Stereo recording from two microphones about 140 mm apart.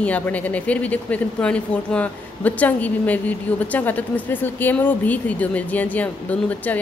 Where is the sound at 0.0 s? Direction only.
10° left (ahead or behind).